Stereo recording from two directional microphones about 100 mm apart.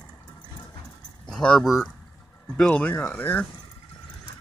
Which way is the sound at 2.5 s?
10° left (ahead or behind).